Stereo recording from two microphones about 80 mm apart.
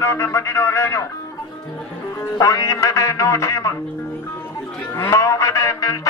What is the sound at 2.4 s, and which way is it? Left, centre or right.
A man's voice, left.